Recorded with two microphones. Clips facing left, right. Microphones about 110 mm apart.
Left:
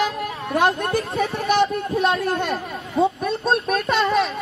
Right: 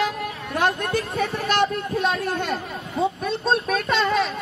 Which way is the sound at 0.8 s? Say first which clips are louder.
Left 2 dB; 25° left (ahead or behind).